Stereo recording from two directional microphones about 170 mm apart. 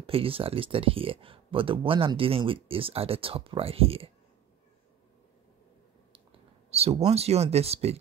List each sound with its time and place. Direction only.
0.0 s speech: 35° right (ahead or behind)
6.7 s a sound: 35° right (ahead or behind)
7.1 s speech: 40° right (ahead or behind)